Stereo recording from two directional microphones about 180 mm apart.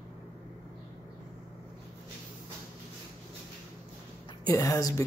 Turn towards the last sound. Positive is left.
turn(degrees=20)  # may be behind; listen again after turning